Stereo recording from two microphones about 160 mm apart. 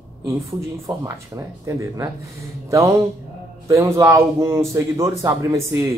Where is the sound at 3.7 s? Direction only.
20° right (ahead or behind).